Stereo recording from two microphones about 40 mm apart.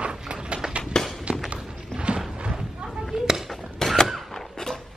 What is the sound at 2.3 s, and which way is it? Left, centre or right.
Slam, right.